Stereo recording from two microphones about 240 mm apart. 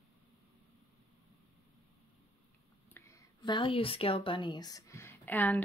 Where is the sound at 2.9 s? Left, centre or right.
Centre.